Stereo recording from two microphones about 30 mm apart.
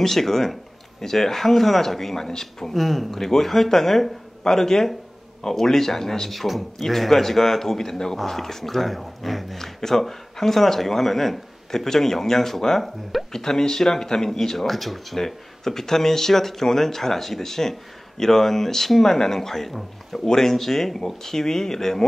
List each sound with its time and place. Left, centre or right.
0.0 s speech: centre
2.7 s speech: centre
9.6 s speech: centre
14.7 s speech: centre